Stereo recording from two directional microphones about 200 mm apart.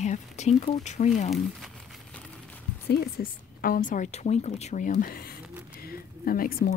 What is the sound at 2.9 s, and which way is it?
Speech, 50° left (ahead or behind).